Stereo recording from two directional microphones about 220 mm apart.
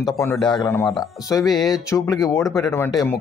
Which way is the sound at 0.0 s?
10° left (ahead or behind).